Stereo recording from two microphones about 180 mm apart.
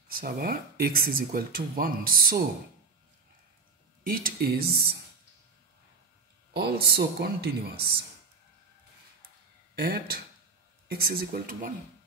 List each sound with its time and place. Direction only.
0.1 s speech: 55° right (ahead or behind)
4.0 s speech: 55° right (ahead or behind)
6.5 s speech: 60° right (ahead or behind)
9.8 s speech: 55° right (ahead or behind)